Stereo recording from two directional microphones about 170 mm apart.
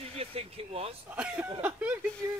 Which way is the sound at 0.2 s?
35° right (ahead or behind).